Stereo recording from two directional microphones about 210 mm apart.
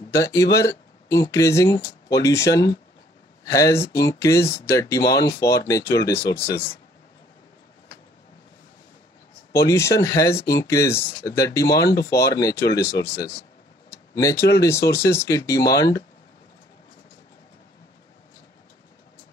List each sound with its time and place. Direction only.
0.1 s speech: 15° left (ahead or behind)
9.5 s speech: 15° left (ahead or behind)
11.9 s speech: 50° left (ahead or behind)
12.3 s speech: 15° left (ahead or behind)